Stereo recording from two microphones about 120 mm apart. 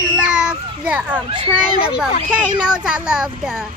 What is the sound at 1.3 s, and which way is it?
Speech, 40° right (ahead or behind).